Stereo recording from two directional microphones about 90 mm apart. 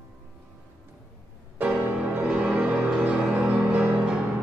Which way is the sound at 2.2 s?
5° right (ahead or behind).